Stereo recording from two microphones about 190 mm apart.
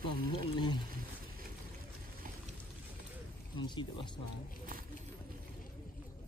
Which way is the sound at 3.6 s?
25° left (ahead or behind).